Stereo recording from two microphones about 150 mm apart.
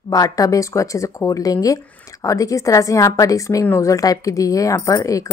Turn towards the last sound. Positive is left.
turn(degrees=20)  # may be behind; listen again after turning